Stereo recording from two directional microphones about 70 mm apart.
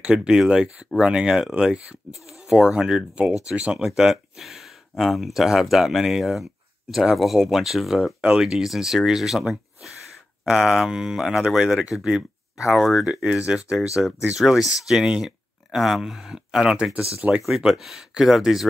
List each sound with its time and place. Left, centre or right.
0.0 s speech: centre
3.7 s speech: centre
12.7 s speech: centre
13.0 s speech: centre